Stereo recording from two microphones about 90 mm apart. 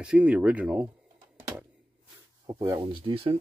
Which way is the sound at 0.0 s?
15° right (ahead or behind).